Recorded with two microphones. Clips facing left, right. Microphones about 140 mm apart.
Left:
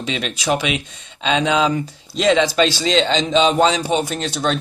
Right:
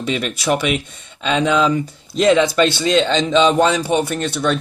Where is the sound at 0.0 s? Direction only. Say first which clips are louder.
Right 3 dB; 55° right (ahead or behind).